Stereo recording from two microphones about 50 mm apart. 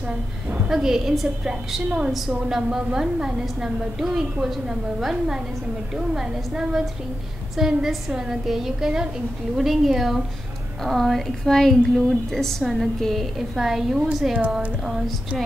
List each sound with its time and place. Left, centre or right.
0.7 s a woman's voice: centre
12.6 s speech: centre